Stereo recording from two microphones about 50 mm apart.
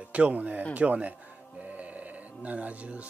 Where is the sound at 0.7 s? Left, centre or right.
Right.